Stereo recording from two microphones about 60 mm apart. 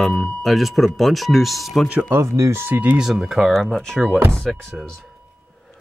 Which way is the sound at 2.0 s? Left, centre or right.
Right.